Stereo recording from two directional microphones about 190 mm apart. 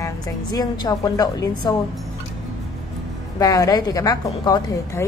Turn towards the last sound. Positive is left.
turn(degrees=20)  # may be behind; listen again after turning